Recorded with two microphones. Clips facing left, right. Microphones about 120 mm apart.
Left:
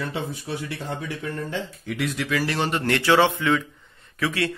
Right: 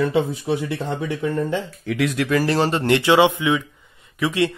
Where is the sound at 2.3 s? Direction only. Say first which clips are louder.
Right 5 dB; 40° right (ahead or behind).